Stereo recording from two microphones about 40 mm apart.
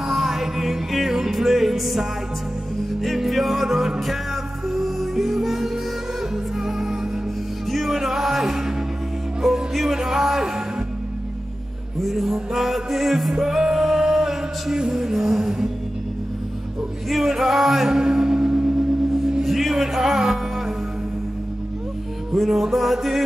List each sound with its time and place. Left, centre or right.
0.0 s music: centre
12.0 s music: centre
17.1 s music: centre
19.4 s music: centre
22.3 s music: centre